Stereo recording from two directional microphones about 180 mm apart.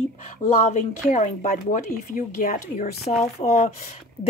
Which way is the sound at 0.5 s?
40° left (ahead or behind).